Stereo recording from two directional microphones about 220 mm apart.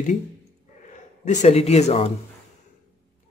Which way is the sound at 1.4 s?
30° left (ahead or behind).